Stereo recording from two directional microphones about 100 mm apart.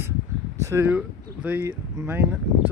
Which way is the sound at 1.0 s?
15° right (ahead or behind).